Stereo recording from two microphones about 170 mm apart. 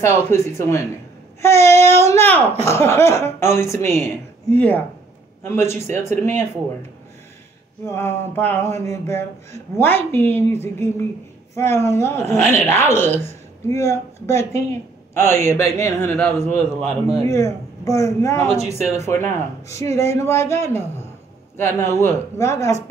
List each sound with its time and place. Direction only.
0.0 s speech: 15° left (ahead or behind)
7.8 s speech: 15° left (ahead or behind)
16.5 s a man's voice: 35° right (ahead or behind)
17.2 s speech: 15° left (ahead or behind)
18.6 s a man's voice: 40° right (ahead or behind)
19.3 s speech: 15° left (ahead or behind)